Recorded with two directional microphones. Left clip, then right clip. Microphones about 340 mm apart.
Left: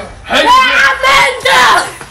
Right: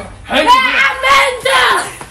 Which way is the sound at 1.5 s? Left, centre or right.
Left.